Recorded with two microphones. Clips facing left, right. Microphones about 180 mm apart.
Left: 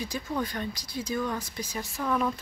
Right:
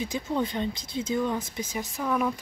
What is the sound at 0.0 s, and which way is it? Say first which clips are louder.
Speech: right 3 dB; 20° right (ahead or behind).